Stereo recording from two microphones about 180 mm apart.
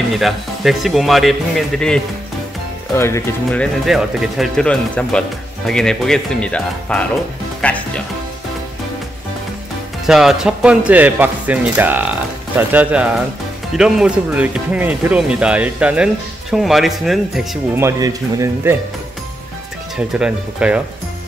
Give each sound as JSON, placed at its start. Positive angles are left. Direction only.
{"t": 0.1, "sound": "speech", "side_deg": 0}
{"t": 3.0, "sound": "speech", "side_deg": 15}
{"t": 3.4, "sound": "speech", "side_deg": 0}
{"t": 10.0, "sound": "speech", "side_deg": 0}
{"t": 17.7, "sound": "speech", "side_deg": -15}
{"t": 20.1, "sound": "speech", "side_deg": -5}